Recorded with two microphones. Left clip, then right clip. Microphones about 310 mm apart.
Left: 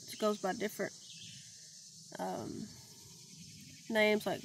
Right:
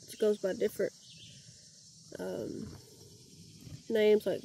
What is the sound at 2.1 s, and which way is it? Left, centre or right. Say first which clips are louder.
Speech: right 1 dB; centre.